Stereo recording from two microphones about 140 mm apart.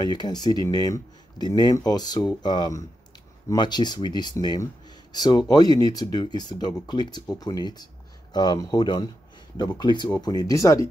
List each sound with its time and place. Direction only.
0.0 s speech: 30° left (ahead or behind)